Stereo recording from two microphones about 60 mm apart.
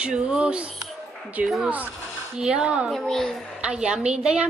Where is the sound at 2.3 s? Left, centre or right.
Centre.